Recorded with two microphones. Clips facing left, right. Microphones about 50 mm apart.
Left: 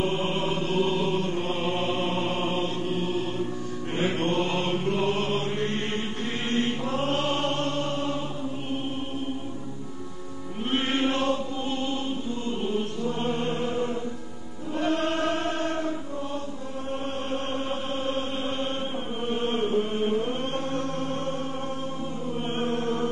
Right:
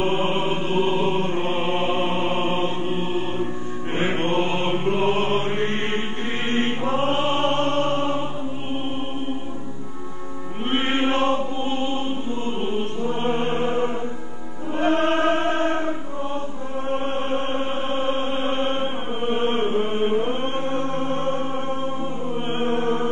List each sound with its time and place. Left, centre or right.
0.0 s chant: right
3.9 s music: right
10.7 s music: right
12.4 s chant: right
14.8 s choir: right
16.9 s chant: right
22.5 s music: right